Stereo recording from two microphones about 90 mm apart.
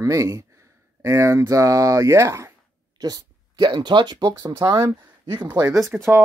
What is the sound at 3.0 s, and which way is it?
Speech, 45° right (ahead or behind).